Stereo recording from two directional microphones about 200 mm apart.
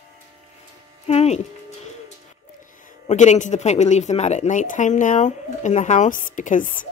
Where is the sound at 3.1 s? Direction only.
35° left (ahead or behind).